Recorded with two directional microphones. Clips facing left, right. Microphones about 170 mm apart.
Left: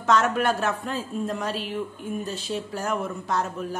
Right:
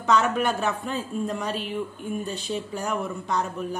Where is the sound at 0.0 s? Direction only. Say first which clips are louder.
Even; centre (ahead or behind).